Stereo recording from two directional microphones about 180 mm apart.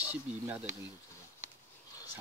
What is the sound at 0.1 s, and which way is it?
Speech, 10° right (ahead or behind).